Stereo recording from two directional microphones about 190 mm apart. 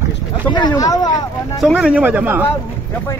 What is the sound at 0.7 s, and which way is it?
Speech, 20° left (ahead or behind).